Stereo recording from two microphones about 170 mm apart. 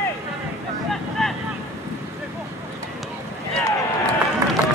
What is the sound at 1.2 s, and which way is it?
Boat, centre (ahead or behind).